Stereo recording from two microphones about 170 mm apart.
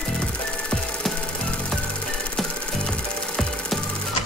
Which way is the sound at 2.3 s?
5° left (ahead or behind).